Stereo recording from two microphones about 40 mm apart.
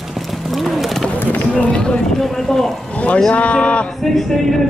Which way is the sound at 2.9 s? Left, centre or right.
Left.